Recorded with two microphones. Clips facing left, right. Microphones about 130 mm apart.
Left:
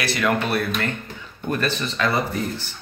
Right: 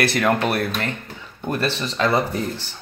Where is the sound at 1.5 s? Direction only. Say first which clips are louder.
Right 1 dB; 30° right (ahead or behind).